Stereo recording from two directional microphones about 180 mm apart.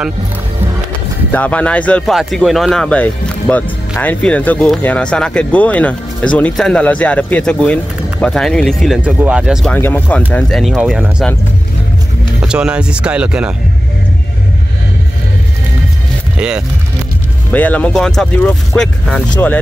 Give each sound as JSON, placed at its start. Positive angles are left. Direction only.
{"t": 1.3, "sound": "speech", "side_deg": 10}
{"t": 9.8, "sound": "speech", "side_deg": 10}
{"t": 12.4, "sound": "speech", "side_deg": -5}
{"t": 16.3, "sound": "speech", "side_deg": -5}
{"t": 17.5, "sound": "speech", "side_deg": 10}